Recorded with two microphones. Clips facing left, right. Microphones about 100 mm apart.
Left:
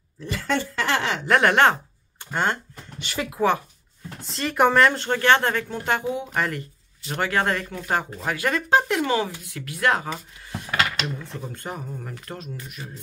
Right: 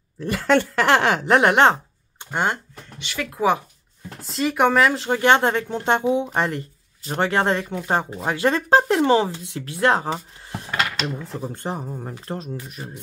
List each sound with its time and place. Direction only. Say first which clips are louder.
0.2 s speech: right 7 dB; 60° right (ahead or behind)
1.2 s speech: left 1 dB; 20° right (ahead or behind)
3.4 s speech: right 2 dB; centre (ahead or behind)
5.2 s speech: right 2 dB; 20° right (ahead or behind)